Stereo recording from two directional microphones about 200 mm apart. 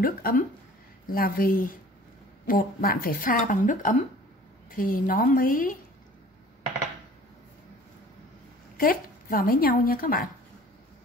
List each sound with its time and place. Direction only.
0.0 s a woman's voice: 45° left (ahead or behind)
8.7 s speech: 45° left (ahead or behind)